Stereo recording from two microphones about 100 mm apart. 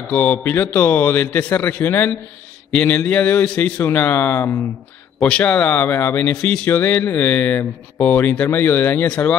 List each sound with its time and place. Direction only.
0.1 s a man's voice: 20° left (ahead or behind)